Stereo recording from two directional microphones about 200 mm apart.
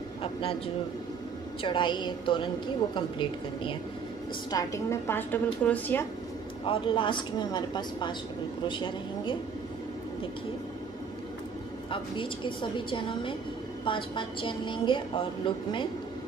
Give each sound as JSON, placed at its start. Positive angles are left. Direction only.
{"t": 0.2, "sound": "a sound", "side_deg": 25}
{"t": 1.6, "sound": "a woman's voice", "side_deg": 25}
{"t": 6.6, "sound": "a woman's voice", "side_deg": 25}
{"t": 11.9, "sound": "a woman's voice", "side_deg": 25}